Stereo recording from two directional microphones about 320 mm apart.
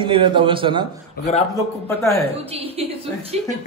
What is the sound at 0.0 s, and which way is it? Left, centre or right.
Speech, centre.